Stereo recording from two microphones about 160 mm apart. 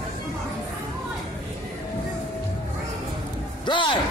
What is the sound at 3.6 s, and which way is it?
Speech, 30° left (ahead or behind).